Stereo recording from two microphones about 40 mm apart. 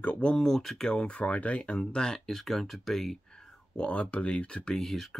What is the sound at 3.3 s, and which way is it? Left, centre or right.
Speech, left.